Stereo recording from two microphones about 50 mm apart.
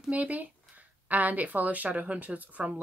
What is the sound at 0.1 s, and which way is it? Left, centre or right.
Speech, right.